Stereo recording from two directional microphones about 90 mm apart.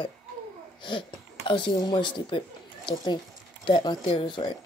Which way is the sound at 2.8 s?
60° left (ahead or behind).